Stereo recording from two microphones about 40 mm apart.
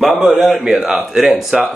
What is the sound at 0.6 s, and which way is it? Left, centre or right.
Speech, centre.